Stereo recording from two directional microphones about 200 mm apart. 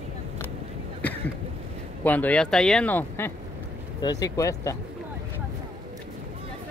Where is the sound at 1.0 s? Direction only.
5° left (ahead or behind).